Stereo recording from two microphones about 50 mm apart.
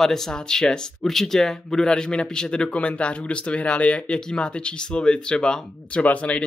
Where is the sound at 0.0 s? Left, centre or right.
Centre.